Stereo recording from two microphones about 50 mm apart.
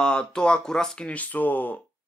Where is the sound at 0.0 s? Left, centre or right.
Centre.